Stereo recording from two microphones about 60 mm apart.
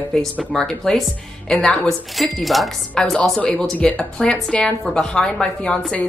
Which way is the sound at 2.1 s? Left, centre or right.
Centre.